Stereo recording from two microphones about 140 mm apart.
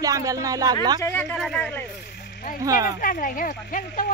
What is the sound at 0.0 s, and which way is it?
Speech, 25° right (ahead or behind).